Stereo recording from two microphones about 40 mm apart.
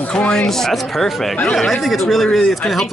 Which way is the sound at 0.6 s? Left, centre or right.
Centre.